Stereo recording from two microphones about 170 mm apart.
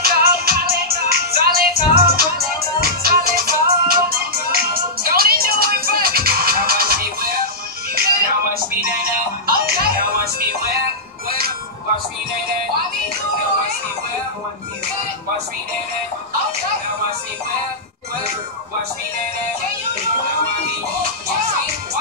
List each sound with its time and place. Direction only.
0.0 s music: 60° right (ahead or behind)
9.5 s music: 60° right (ahead or behind)